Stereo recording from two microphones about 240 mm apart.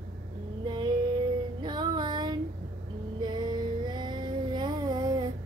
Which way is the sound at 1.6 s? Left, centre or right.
Centre.